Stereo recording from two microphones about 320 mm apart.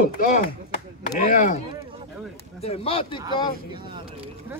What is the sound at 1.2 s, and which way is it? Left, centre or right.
Speech, left.